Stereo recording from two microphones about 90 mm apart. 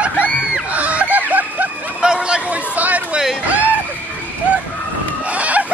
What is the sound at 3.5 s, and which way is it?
Music, 15° right (ahead or behind).